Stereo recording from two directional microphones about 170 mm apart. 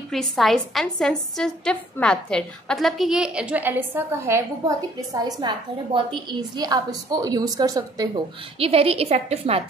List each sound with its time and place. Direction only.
0.1 s a woman's voice: centre (ahead or behind); by 8.1 s 20° right (ahead or behind)
8.5 s a woman's voice: 35° right (ahead or behind)